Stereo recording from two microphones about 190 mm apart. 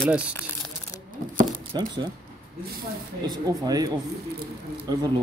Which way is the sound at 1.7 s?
25° right (ahead or behind).